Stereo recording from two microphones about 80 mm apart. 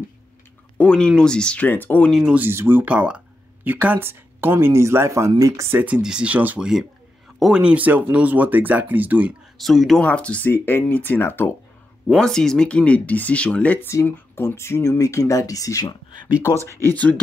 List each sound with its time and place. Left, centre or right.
0.7 s speech: centre
1.7 s speech: left
2.3 s speech: right
2.9 s speech: centre; by 5.3 s right
5.7 s speech: centre
7.3 s speech: centre
9.6 s speech: centre
10.0 s speech: centre
10.5 s speech: left
12.2 s speech: centre
14.0 s speech: left
16.8 s speech: centre